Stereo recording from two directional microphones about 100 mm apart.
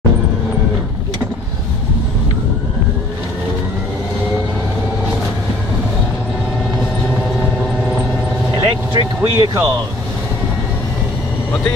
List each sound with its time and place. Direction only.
8.5 s vehicle: 45° right (ahead or behind)